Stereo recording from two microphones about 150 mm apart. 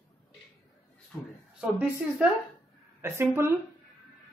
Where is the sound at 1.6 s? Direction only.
10° right (ahead or behind).